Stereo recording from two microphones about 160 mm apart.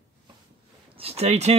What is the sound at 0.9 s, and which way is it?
Speech, 40° right (ahead or behind).